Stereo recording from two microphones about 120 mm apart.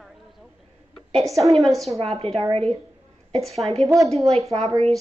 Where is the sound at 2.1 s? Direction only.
60° right (ahead or behind).